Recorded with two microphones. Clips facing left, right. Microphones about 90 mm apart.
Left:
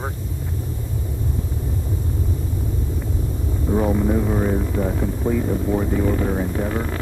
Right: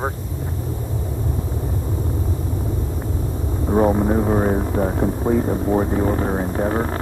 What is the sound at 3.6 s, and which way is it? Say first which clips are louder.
Speech: right 3 dB; 35° right (ahead or behind).